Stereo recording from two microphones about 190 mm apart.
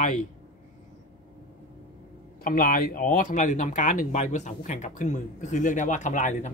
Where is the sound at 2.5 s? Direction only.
50° left (ahead or behind).